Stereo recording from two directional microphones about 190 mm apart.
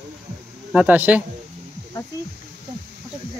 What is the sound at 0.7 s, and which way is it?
Speech, 10° right (ahead or behind).